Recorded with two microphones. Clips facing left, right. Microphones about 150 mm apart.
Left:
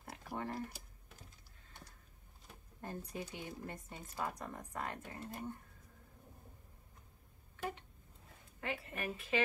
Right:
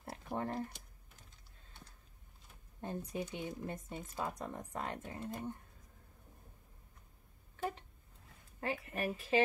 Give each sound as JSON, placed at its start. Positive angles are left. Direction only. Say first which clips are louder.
{"t": 0.0, "sound": "a sound", "louder": "right 3 dB", "side_deg": -30}
{"t": 2.8, "sound": "speech", "louder": "right 4 dB", "side_deg": -25}
{"t": 8.6, "sound": "a woman's voice", "louder": "right 4 dB", "side_deg": -35}